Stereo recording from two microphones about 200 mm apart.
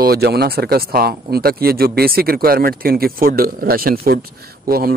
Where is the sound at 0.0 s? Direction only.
50° right (ahead or behind).